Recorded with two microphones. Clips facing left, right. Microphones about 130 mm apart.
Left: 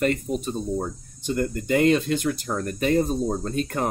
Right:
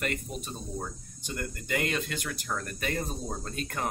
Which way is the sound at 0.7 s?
30° left (ahead or behind).